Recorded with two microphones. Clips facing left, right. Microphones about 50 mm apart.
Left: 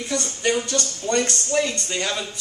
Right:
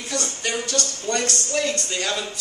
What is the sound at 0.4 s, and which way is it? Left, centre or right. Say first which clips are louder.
Speech: left 5 dB; left.